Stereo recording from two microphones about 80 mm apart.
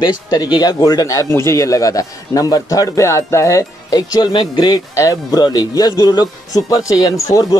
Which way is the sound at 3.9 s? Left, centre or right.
Left.